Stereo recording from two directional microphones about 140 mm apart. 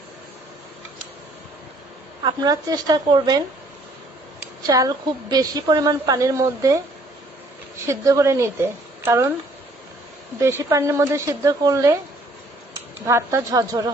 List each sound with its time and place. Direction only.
2.2 s a woman's voice: 25° right (ahead or behind)
4.6 s a woman's voice: 25° right (ahead or behind)
7.8 s a woman's voice: 20° right (ahead or behind)
10.4 s a woman's voice: 20° right (ahead or behind)
13.0 s a woman's voice: 20° right (ahead or behind)